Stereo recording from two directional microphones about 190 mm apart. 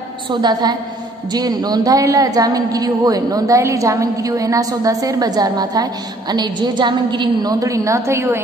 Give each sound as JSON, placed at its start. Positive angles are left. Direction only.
{"t": 0.3, "sound": "a woman's voice", "side_deg": -20}